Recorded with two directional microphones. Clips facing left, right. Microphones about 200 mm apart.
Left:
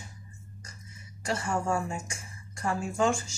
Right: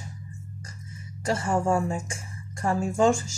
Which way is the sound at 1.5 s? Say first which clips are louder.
Right 6 dB; 30° right (ahead or behind).